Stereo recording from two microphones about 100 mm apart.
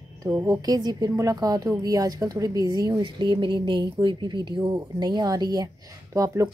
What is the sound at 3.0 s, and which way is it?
Speech, 55° right (ahead or behind).